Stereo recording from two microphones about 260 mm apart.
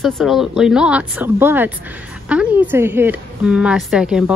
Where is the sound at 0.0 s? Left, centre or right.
Centre.